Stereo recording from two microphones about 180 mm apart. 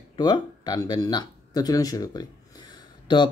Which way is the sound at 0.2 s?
20° left (ahead or behind).